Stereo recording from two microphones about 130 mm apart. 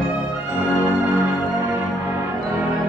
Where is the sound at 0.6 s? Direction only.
15° right (ahead or behind).